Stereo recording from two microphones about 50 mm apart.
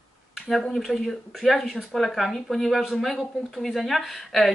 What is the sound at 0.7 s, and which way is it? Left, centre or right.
Speech, centre.